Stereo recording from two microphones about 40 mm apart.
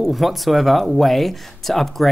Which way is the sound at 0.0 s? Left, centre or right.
Centre.